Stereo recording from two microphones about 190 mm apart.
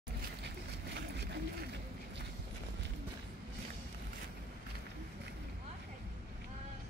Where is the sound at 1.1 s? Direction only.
65° right (ahead or behind).